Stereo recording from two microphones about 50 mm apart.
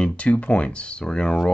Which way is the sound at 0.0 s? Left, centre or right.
Left.